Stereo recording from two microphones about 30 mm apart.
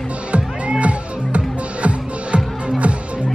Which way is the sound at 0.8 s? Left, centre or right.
Right.